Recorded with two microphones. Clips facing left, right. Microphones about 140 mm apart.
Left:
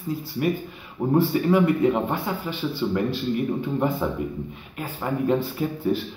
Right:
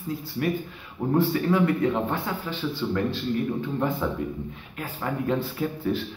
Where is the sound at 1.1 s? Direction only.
5° left (ahead or behind).